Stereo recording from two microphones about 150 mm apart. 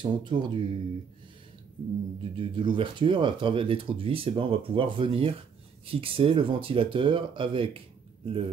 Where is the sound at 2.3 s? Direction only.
35° right (ahead or behind).